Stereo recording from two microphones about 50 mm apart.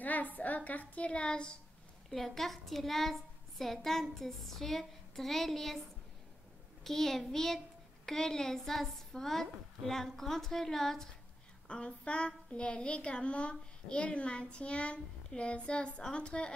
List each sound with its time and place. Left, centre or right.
0.0 s a woman's voice: left; by 1.6 s centre
2.0 s a woman's voice: centre
6.8 s a woman's voice: centre
11.6 s a woman's voice: left